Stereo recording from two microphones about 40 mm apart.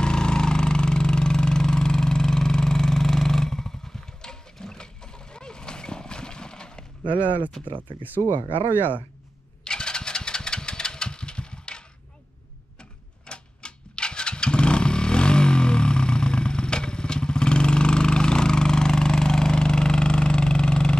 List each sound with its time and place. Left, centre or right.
0.0 s engine: centre
7.2 s speech: right
9.7 s engine: centre
13.3 s vehicle: left